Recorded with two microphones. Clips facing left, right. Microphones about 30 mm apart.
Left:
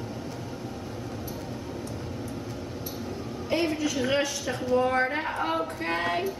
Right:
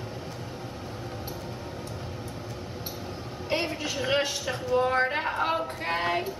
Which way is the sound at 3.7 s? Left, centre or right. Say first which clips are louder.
Left 1 dB; right.